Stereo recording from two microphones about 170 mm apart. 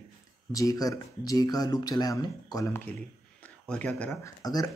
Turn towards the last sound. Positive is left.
turn(degrees=20)  # may be behind; listen again after turning